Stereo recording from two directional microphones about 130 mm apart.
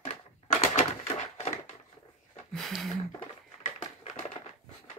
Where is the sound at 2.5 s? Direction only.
Centre (ahead or behind).